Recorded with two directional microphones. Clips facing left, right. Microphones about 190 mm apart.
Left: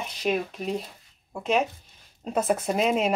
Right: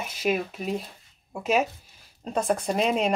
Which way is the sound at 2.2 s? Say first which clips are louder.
Left 1 dB; 5° left (ahead or behind).